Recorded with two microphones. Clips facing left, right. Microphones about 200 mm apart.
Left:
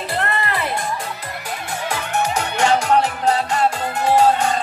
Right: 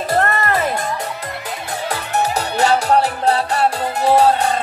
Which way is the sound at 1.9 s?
35° right (ahead or behind).